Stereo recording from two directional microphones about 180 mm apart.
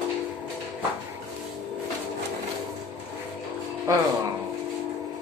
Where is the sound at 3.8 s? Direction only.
20° right (ahead or behind).